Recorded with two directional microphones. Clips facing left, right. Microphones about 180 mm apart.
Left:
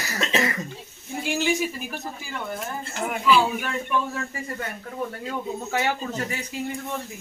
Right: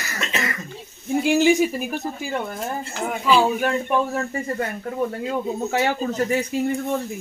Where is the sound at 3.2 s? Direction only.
40° right (ahead or behind).